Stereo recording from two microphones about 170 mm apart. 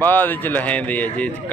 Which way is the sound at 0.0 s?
10° left (ahead or behind).